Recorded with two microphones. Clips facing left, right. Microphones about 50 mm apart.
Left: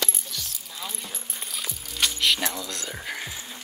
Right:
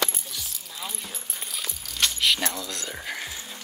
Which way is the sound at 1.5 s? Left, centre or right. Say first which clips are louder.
Even; centre.